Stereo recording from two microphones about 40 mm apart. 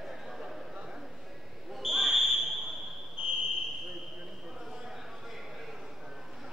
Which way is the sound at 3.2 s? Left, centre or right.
Right.